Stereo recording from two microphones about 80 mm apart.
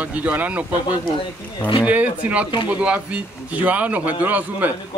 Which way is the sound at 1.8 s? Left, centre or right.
Centre.